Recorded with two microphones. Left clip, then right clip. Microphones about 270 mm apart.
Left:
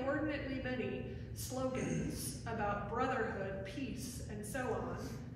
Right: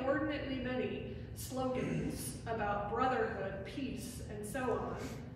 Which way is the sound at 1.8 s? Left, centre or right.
Centre.